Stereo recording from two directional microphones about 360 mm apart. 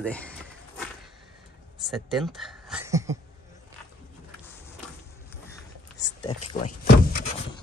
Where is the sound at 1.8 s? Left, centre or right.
Centre.